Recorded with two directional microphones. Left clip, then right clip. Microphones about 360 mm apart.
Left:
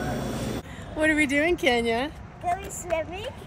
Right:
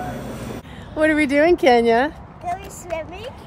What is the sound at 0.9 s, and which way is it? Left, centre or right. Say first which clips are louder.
Speech: right 6 dB; centre.